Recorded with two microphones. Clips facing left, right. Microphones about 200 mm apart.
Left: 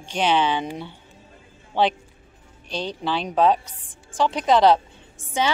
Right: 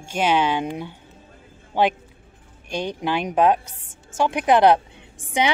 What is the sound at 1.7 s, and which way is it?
Speech, 10° right (ahead or behind).